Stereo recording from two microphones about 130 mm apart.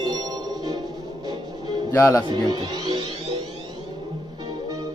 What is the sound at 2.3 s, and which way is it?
Speech, 35° right (ahead or behind).